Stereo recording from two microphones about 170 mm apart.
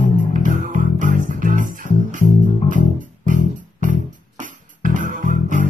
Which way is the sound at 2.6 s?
50° right (ahead or behind).